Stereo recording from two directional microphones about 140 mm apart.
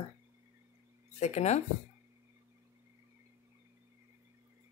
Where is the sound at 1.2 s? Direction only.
50° left (ahead or behind).